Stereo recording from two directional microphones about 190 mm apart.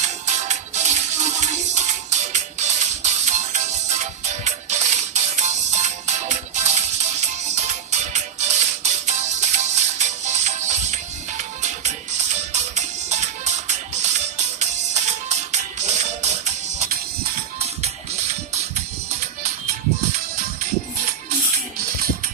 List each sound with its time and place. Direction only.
0.0 s music: 40° right (ahead or behind)